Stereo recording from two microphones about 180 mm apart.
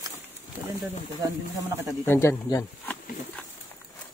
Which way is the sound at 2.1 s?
15° left (ahead or behind).